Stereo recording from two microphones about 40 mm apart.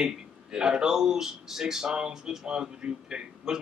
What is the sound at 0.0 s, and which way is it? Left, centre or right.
Speech, centre.